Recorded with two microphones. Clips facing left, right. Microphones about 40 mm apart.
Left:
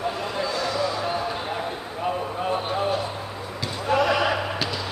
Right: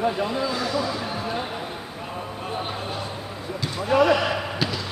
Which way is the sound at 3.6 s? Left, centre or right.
Centre.